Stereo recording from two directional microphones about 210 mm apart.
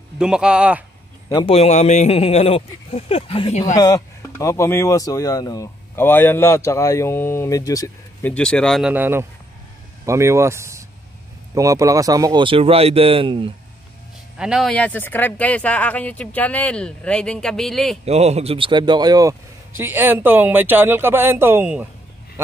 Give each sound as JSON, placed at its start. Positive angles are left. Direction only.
{"t": 0.2, "sound": "speech", "side_deg": -5}
{"t": 1.3, "sound": "a man's voice", "side_deg": 25}
{"t": 3.7, "sound": "speech", "side_deg": 15}
{"t": 14.4, "sound": "speech", "side_deg": 0}
{"t": 18.0, "sound": "speech", "side_deg": -30}